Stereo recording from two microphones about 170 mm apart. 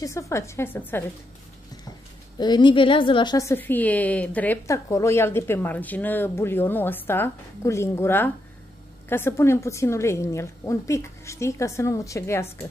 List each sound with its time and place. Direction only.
0.0 s a woman's voice: 15° left (ahead or behind)
2.3 s a woman's voice: 25° left (ahead or behind)